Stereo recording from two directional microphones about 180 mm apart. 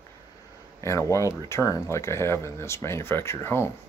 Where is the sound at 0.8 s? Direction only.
15° left (ahead or behind).